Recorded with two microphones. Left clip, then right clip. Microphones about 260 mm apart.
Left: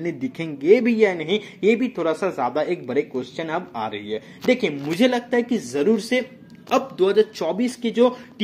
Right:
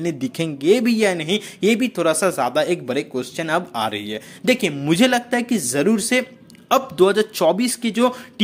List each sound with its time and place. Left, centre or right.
0.0 s a man's voice: right